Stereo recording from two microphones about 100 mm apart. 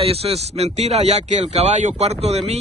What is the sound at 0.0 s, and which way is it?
Speech, 80° right.